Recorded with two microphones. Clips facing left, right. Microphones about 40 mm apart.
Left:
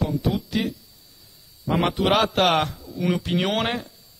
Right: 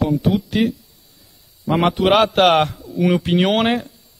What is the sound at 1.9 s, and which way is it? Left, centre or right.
Speech, right.